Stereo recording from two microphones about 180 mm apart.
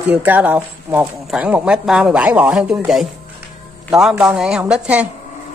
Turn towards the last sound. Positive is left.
turn(degrees=-5)  # may be behind; listen again after turning